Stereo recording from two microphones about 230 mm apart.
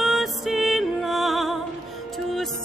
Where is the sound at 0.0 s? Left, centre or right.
Centre.